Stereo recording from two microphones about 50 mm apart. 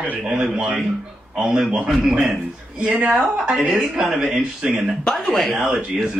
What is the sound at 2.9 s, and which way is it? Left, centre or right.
Speech, right.